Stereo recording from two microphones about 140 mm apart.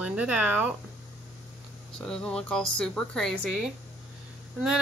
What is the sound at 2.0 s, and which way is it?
Speech, 5° left (ahead or behind).